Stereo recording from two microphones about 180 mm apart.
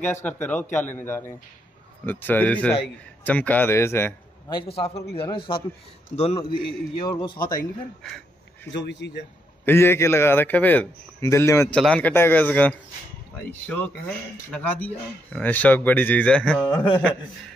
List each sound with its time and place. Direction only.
0.0 s a man's voice: 10° left (ahead or behind)
4.6 s a man's voice: 35° left (ahead or behind)
8.0 s speech: 5° left (ahead or behind)
8.7 s speech: 75° left (ahead or behind)
9.7 s a man's voice: 15° left (ahead or behind)
16.6 s a man's voice: 30° left (ahead or behind)